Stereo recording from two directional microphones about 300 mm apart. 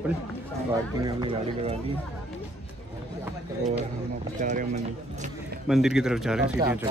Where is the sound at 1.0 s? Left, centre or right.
Centre.